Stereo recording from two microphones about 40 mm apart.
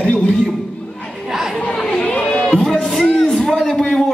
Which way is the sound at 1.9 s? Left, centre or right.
Left.